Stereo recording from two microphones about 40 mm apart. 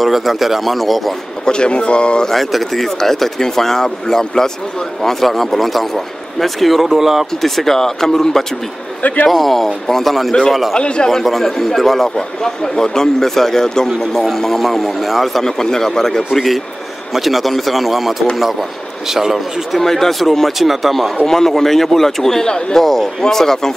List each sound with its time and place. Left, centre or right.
0.0 s a man's voice: centre
1.4 s speech: left
2.2 s a man's voice: centre
7.4 s speech: centre
9.0 s a man's voice: left
9.3 s a man's voice: centre
10.8 s speech: left
11.1 s speech: centre
15.6 s speech: centre
16.3 s a man's voice: centre
19.8 s a man's voice: centre
21.3 s speech: centre